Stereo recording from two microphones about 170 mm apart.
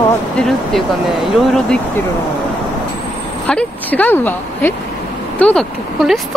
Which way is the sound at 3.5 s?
10° left (ahead or behind).